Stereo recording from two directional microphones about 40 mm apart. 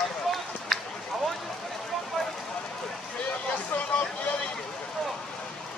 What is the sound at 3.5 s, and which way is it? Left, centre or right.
Vehicle, left.